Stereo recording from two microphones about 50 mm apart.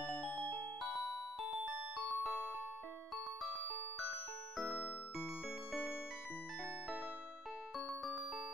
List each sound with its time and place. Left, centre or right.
0.3 s music: left
1.6 s music: right
3.4 s music: left